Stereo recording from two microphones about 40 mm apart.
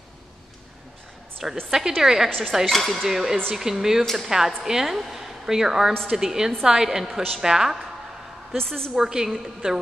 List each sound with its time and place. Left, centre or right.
1.7 s speech: centre
2.2 s a woman's voice: centre
2.9 s speech: centre
4.0 s speech: centre
4.3 s speech: centre
8.5 s a woman's voice: centre
8.9 s speech: centre